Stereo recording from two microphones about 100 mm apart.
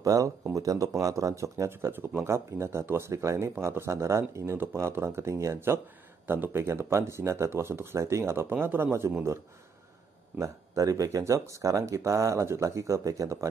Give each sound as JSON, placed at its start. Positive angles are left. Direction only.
{"t": 0.0, "sound": "speech", "side_deg": -35}
{"t": 10.4, "sound": "speech", "side_deg": -35}